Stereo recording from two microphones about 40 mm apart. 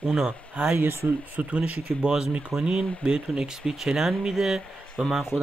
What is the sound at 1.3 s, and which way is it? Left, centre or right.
Speech, right.